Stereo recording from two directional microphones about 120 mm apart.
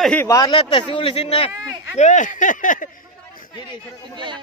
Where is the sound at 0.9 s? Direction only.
45° left (ahead or behind).